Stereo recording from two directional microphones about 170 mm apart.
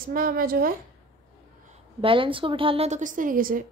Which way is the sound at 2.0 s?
30° right (ahead or behind).